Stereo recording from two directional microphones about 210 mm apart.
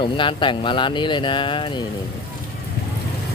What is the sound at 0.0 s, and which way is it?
Speech, 25° left (ahead or behind).